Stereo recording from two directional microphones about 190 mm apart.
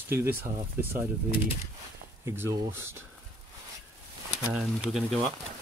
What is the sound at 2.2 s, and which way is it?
Speech, 15° right (ahead or behind).